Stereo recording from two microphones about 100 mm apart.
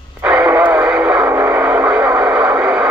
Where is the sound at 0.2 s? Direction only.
15° right (ahead or behind).